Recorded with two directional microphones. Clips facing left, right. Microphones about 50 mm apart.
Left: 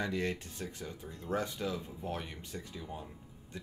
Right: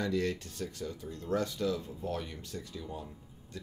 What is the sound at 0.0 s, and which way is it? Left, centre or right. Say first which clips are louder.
Speech: right 3 dB; left.